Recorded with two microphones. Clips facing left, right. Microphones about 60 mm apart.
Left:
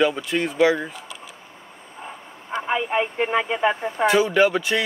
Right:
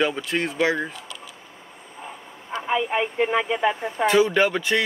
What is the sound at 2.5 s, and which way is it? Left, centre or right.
Speech, left.